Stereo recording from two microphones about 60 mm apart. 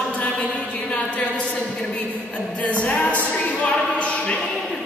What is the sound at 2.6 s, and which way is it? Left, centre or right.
A woman's voice, left.